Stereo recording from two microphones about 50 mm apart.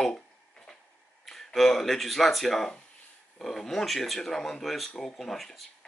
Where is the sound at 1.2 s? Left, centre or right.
Centre.